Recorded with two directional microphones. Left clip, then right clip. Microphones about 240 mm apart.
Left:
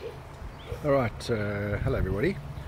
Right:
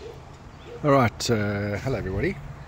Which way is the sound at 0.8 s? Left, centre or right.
Right.